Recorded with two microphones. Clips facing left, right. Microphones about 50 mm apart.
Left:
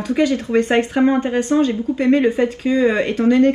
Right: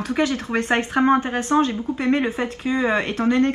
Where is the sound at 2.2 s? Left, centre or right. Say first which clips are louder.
Left 7 dB; centre.